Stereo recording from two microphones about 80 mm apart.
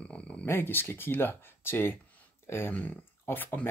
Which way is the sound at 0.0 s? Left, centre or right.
Centre.